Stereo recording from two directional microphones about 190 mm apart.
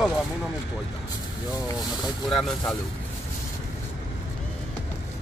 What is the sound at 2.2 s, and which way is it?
Speech, centre (ahead or behind).